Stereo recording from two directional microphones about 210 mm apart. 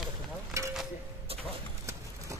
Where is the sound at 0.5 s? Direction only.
15° right (ahead or behind).